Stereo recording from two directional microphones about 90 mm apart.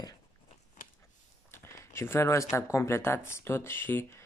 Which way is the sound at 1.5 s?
30° left (ahead or behind).